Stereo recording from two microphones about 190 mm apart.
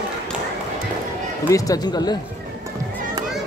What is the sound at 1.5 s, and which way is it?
Speech, 20° left (ahead or behind).